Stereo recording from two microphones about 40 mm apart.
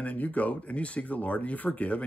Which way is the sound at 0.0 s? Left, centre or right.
Left.